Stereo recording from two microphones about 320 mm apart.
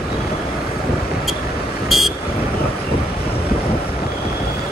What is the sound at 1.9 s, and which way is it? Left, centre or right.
Vehicle, centre.